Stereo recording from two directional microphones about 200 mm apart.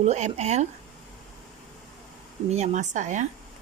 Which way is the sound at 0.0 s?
35° right (ahead or behind).